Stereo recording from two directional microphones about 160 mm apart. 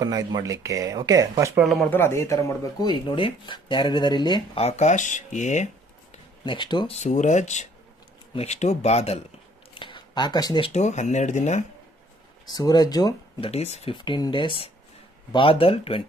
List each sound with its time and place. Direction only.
0.0 s speech: 25° right (ahead or behind)
1.6 s speech: centre (ahead or behind)
1.9 s speech: 15° left (ahead or behind)
4.6 s speech: 45° left (ahead or behind)
6.4 s speech: 30° left (ahead or behind)
6.9 s speech: 45° left (ahead or behind)
9.8 s a sound: 30° left (ahead or behind)
10.7 s speech: 45° left (ahead or behind)
12.4 s speech: 25° left (ahead or behind)
13.5 s speech: 40° left (ahead or behind)
13.9 s speech: 30° left (ahead or behind)